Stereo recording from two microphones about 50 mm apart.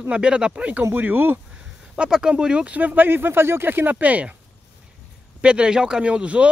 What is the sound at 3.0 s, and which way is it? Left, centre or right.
Speech, right.